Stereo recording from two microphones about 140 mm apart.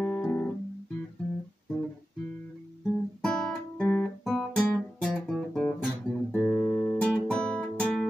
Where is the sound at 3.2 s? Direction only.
5° left (ahead or behind).